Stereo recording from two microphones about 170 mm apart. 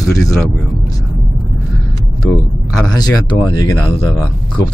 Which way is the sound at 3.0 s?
25° left (ahead or behind).